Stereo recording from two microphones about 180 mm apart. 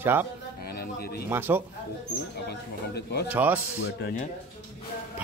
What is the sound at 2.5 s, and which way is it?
Speech, 65° left (ahead or behind).